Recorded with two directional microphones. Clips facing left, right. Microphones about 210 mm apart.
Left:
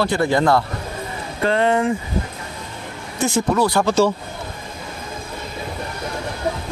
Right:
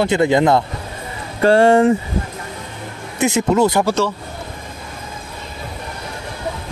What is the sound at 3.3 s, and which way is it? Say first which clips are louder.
Speech: right 3 dB; 20° right (ahead or behind).